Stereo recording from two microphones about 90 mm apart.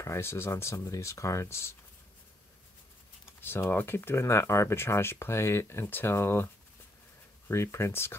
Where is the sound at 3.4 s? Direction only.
25° left (ahead or behind).